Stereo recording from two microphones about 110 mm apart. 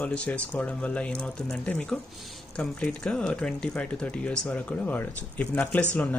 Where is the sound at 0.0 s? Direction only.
10° left (ahead or behind).